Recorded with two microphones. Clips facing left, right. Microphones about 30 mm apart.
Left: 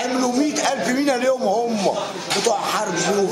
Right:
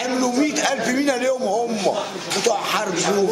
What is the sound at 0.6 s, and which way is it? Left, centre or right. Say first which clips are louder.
Speech: even; centre.